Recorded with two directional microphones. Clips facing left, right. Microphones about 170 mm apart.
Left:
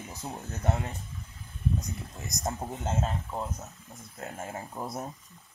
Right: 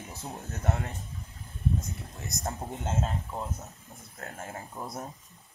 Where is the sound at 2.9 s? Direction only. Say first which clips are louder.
Left 1 dB; centre (ahead or behind).